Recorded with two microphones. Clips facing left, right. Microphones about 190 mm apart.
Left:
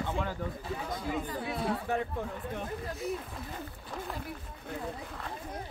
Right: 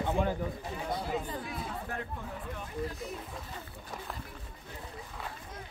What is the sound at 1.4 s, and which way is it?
Speech, 75° left (ahead or behind).